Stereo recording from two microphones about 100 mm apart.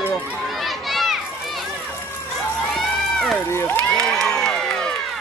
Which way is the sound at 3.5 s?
25° left (ahead or behind).